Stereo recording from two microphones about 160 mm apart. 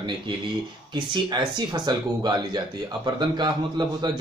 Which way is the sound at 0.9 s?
30° right (ahead or behind).